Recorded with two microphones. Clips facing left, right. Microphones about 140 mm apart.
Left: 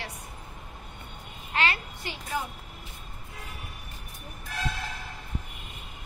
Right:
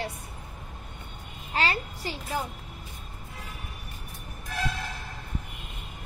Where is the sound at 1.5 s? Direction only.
35° right (ahead or behind).